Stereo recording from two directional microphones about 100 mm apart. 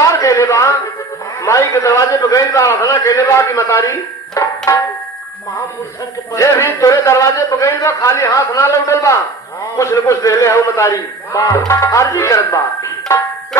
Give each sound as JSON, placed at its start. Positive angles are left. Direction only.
{"t": 0.0, "sound": "a sound", "side_deg": 30}
{"t": 1.4, "sound": "a man's voice", "side_deg": 30}
{"t": 6.3, "sound": "a man's voice", "side_deg": 30}